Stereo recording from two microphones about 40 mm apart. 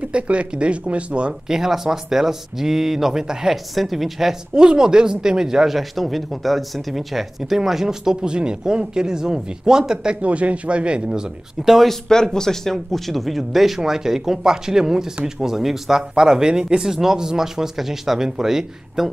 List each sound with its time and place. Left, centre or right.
0.0 s speech: right
1.5 s speech: centre
3.7 s speech: centre
4.6 s speech: centre
5.8 s speech: centre
10.2 s speech: right
11.6 s speech: centre
11.9 s speech: centre